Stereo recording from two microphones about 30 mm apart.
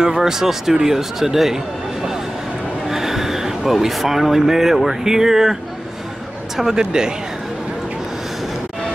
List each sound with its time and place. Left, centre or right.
0.0 s speech: centre
2.9 s a sound: centre
3.7 s speech: centre
6.8 s speech: right